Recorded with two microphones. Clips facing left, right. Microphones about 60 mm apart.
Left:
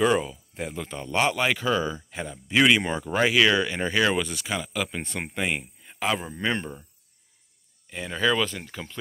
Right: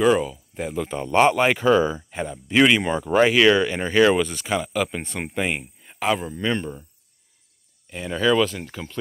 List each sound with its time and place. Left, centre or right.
0.0 s speech: centre
0.8 s speech: right
2.0 s speech: centre
6.1 s speech: centre
7.9 s speech: centre